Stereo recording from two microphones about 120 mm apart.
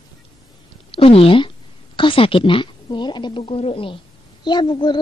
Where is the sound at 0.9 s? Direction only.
50° left (ahead or behind).